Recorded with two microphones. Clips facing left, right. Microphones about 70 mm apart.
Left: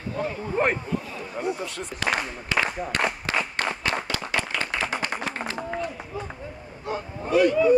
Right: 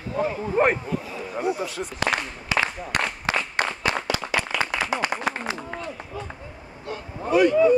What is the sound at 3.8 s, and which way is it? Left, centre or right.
Clapping, centre.